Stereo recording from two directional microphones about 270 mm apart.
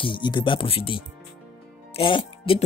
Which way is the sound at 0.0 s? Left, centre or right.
Centre.